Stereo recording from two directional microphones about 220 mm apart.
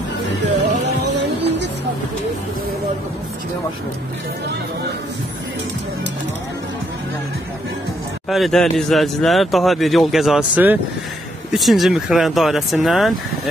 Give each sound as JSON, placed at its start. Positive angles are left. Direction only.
{"t": 1.0, "sound": "vehicle", "side_deg": -50}
{"t": 8.3, "sound": "a man's voice", "side_deg": 0}